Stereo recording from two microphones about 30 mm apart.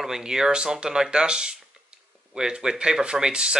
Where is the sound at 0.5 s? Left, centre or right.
Right.